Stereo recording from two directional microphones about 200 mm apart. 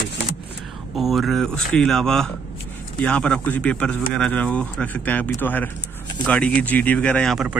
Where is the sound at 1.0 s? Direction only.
Centre (ahead or behind).